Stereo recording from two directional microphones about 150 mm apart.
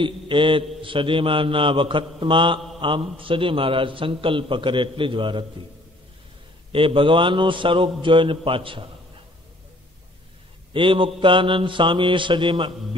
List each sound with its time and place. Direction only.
0.0 s a man's voice: 35° right (ahead or behind)
6.7 s a man's voice: 35° right (ahead or behind)
10.7 s a man's voice: 35° right (ahead or behind)